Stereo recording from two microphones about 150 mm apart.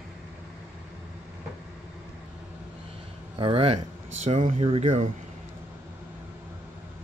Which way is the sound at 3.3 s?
35° right (ahead or behind).